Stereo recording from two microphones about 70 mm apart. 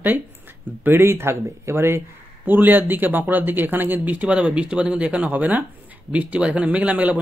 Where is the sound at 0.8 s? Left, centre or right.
Right.